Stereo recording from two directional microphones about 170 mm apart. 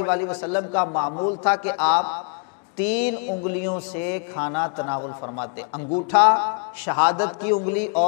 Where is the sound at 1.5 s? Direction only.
10° left (ahead or behind).